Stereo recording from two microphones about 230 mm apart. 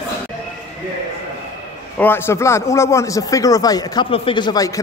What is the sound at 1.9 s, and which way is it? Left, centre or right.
Speech, centre.